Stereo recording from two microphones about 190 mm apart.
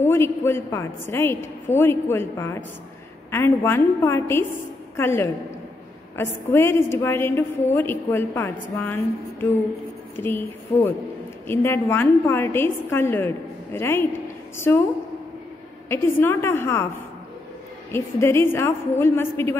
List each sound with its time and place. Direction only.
0.0 s a woman's voice: 15° left (ahead or behind)
10.1 s a woman's voice: 10° left (ahead or behind)
15.9 s a woman's voice: 10° left (ahead or behind)
17.9 s a woman's voice: 10° left (ahead or behind)